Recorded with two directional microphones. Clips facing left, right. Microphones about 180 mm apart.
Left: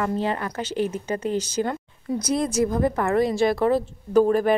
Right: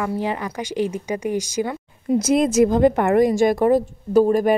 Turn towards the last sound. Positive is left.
turn(degrees=-10)  # may be behind; listen again after turning